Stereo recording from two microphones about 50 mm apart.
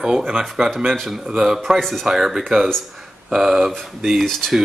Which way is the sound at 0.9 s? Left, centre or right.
Centre.